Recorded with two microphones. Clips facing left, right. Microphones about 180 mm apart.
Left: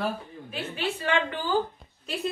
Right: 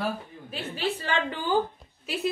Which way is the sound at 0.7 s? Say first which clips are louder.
Left 1 dB; 35° right (ahead or behind).